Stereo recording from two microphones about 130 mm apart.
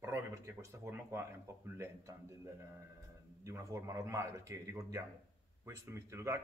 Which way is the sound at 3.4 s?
25° right (ahead or behind).